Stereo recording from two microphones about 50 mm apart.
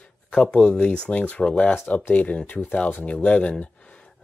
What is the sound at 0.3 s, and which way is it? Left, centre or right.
Speech, left.